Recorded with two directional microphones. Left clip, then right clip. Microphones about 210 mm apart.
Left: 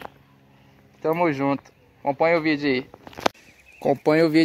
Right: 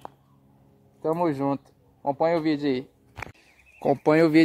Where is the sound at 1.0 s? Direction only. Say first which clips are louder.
Left 3 dB; centre (ahead or behind).